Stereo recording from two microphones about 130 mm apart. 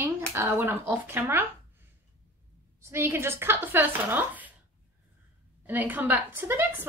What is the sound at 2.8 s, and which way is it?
Speech, 20° right (ahead or behind).